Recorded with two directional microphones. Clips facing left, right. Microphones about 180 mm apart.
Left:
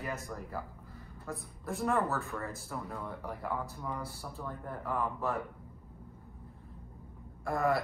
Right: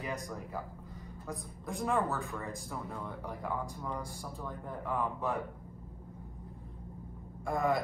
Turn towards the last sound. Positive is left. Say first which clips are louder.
# even
turn(degrees=0)  # may be behind; listen again after turning